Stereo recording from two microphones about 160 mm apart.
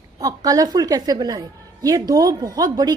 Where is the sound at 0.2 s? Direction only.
20° right (ahead or behind).